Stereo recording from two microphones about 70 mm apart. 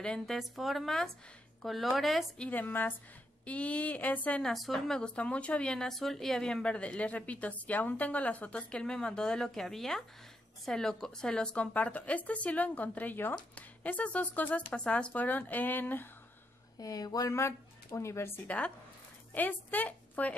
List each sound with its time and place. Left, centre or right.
0.0 s speech: centre
0.4 s speech: centre
2.3 s speech: centre
2.6 s a woman's voice: left
3.4 s a woman's voice: centre
4.4 s a woman's voice: centre; by 16.1 s left
16.7 s speech: left
17.4 s speech: left
19.3 s a woman's voice: left